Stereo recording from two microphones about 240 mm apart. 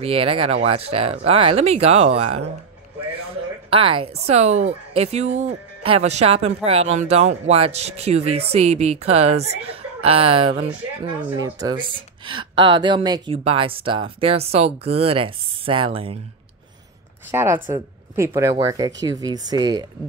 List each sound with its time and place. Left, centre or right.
0.0 s speech: right
3.7 s speech: right
17.3 s speech: centre